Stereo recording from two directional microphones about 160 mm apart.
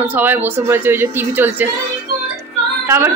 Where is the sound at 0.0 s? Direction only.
10° right (ahead or behind).